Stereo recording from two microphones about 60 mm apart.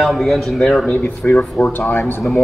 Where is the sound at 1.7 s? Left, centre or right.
Left.